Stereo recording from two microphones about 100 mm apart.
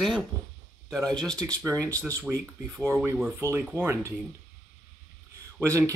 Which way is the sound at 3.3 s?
25° right (ahead or behind).